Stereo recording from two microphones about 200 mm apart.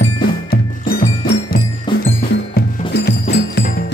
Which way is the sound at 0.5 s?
50° left (ahead or behind).